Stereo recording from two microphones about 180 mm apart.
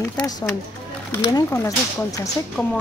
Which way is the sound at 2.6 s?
5° left (ahead or behind).